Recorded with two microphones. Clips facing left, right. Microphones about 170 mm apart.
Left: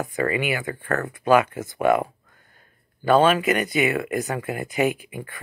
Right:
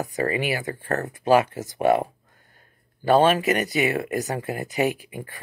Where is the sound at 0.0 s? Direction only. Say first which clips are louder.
Left 1 dB; 35° right (ahead or behind).